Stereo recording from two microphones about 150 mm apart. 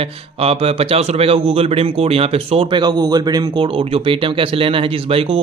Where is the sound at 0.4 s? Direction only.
40° right (ahead or behind).